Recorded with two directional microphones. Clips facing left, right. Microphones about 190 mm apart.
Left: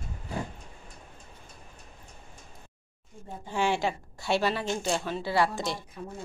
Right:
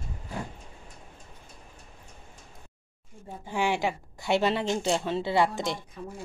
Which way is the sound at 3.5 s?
15° right (ahead or behind).